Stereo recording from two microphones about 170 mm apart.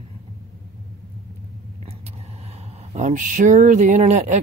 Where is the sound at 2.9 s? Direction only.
45° right (ahead or behind).